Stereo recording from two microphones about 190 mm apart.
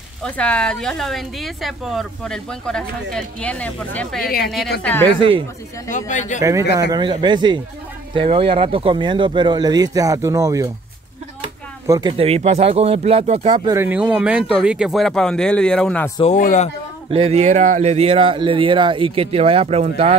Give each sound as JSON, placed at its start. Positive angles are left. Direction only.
{"t": 0.2, "sound": "speech", "side_deg": 5}
{"t": 5.0, "sound": "speech", "side_deg": -25}
{"t": 5.9, "sound": "speech", "side_deg": 40}
{"t": 6.4, "sound": "speech", "side_deg": -15}
{"t": 11.9, "sound": "speech", "side_deg": -25}
{"t": 13.7, "sound": "speech", "side_deg": -10}
{"t": 16.3, "sound": "speech", "side_deg": 40}
{"t": 17.1, "sound": "speech", "side_deg": -30}